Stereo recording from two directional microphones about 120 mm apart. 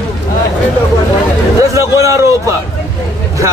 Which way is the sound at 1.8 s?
25° right (ahead or behind).